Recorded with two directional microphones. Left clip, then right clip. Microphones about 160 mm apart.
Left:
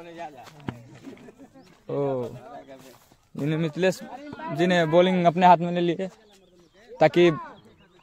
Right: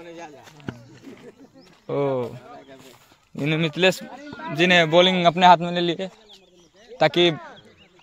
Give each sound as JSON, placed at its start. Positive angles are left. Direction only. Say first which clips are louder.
{"t": 0.0, "sound": "a sound", "louder": "left 1 dB", "side_deg": 65}
{"t": 0.5, "sound": "speech", "louder": "right 1 dB", "side_deg": -5}
{"t": 1.1, "sound": "wild animals", "louder": "right 1 dB", "side_deg": -10}
{"t": 1.6, "sound": "a man's voice", "louder": "right 3 dB", "side_deg": -10}
{"t": 4.0, "sound": "a man's voice", "louder": "right 1 dB", "side_deg": -45}
{"t": 4.6, "sound": "a man's voice", "louder": "right 4 dB", "side_deg": 5}